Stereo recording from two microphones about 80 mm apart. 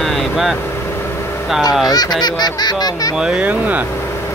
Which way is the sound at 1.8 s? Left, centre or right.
Left.